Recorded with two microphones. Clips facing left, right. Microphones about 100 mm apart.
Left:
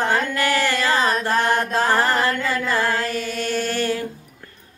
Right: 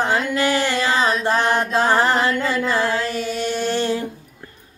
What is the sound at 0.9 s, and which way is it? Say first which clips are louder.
Carnatic music: right 1 dB; 45° left (ahead or behind).